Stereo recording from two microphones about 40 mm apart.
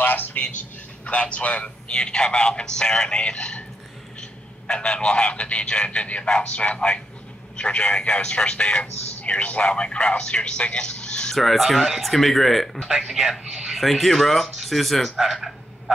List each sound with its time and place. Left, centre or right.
0.0 s a sound: left
1.0 s a man's voice: left
11.3 s speech: centre
12.8 s a man's voice: centre
13.5 s a sound: centre
13.7 s speech: centre